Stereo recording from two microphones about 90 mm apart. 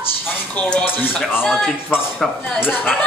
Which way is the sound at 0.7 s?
20° left (ahead or behind).